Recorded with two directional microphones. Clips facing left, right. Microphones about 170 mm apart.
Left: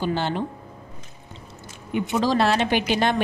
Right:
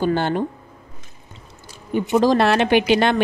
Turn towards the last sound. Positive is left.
turn(degrees=-70)  # may be behind; listen again after turning